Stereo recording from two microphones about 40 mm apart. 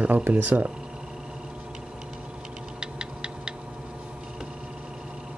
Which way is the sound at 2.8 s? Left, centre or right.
Centre.